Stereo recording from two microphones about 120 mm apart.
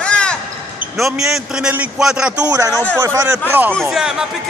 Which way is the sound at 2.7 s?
15° left (ahead or behind).